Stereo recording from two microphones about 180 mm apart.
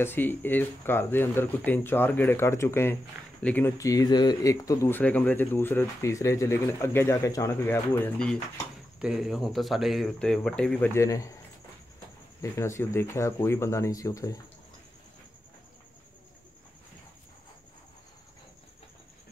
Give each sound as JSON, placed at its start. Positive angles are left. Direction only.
{"t": 0.0, "sound": "speech", "side_deg": 10}
{"t": 9.0, "sound": "speech", "side_deg": -5}
{"t": 11.0, "sound": "speech", "side_deg": 15}
{"t": 12.4, "sound": "speech", "side_deg": 15}